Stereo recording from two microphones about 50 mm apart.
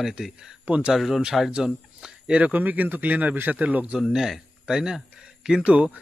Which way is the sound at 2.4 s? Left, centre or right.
Right.